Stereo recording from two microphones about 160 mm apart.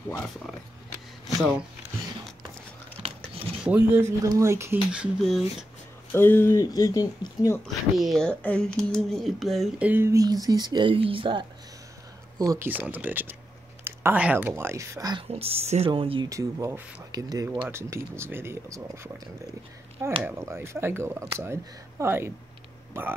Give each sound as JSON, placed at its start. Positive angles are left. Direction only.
{"t": 3.0, "sound": "a sound", "side_deg": -35}
{"t": 3.6, "sound": "speech", "side_deg": -10}
{"t": 4.9, "sound": "speech", "side_deg": -5}
{"t": 6.1, "sound": "speech", "side_deg": 15}
{"t": 7.6, "sound": "speech", "side_deg": 0}
{"t": 12.4, "sound": "speech", "side_deg": -20}
{"t": 15.2, "sound": "speech", "side_deg": -40}
{"t": 16.3, "sound": "speech", "side_deg": -20}
{"t": 20.2, "sound": "speech", "side_deg": -15}